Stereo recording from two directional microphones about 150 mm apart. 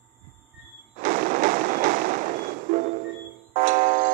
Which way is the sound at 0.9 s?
60° right (ahead or behind).